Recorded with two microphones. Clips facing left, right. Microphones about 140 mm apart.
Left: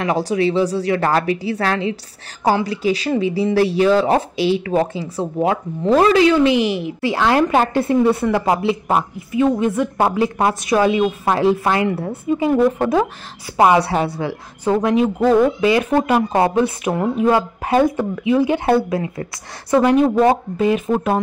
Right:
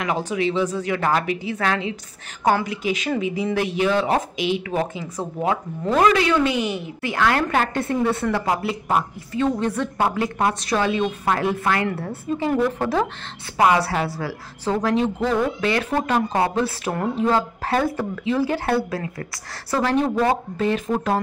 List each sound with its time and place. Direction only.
0.0 s speech: 35° left (ahead or behind)
9.4 s a woman's voice: 5° left (ahead or behind)
9.9 s a woman's voice: 25° left (ahead or behind)
12.3 s a woman's voice: 10° left (ahead or behind)